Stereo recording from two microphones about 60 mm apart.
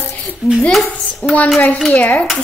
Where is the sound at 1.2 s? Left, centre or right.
Left.